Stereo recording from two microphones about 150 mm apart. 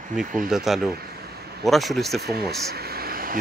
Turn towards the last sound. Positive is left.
turn(degrees=-80)